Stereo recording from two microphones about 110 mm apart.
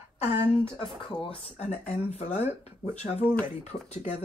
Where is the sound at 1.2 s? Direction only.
60° left (ahead or behind); by 2.5 s 75° left (ahead or behind).